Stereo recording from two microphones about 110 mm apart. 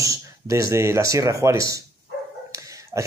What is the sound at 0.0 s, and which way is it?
Speech, 30° right (ahead or behind).